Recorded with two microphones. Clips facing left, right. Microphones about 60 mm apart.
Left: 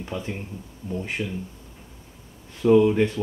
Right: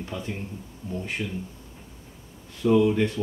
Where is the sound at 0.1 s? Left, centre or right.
Left.